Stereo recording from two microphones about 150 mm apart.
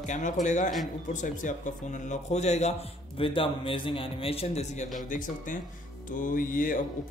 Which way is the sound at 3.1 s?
35° left (ahead or behind).